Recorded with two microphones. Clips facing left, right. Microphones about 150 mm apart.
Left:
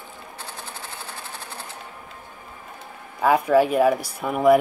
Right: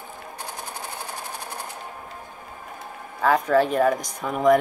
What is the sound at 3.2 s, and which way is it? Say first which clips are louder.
Speech: left 2 dB; 10° left (ahead or behind).